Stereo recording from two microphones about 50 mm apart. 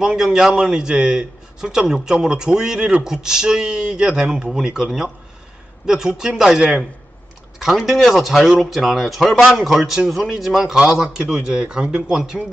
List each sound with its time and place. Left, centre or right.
0.0 s a man's voice: centre
10.8 s a man's voice: centre